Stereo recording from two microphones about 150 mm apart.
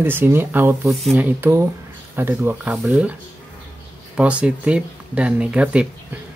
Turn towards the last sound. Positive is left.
turn(degrees=-10)  # may be behind; listen again after turning